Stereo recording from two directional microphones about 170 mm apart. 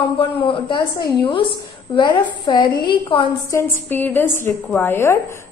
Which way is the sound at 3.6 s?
10° left (ahead or behind).